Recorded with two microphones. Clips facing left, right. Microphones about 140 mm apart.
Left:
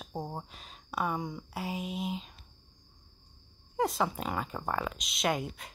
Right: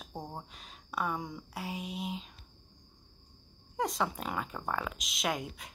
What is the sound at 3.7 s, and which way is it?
Speech, centre (ahead or behind).